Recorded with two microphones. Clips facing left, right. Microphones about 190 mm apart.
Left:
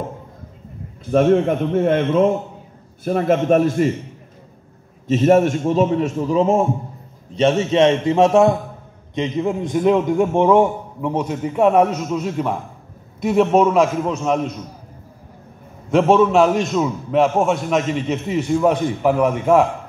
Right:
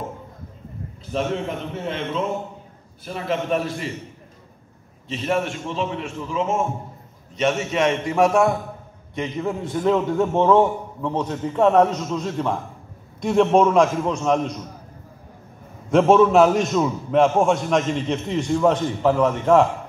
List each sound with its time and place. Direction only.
1.1 s a man's voice: 55° left (ahead or behind)
5.0 s a man's voice: 45° left (ahead or behind); by 14.6 s 5° left (ahead or behind)
15.9 s a man's voice: centre (ahead or behind)